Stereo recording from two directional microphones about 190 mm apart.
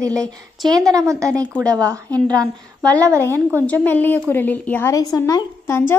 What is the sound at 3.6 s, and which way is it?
A woman's voice, 10° left (ahead or behind).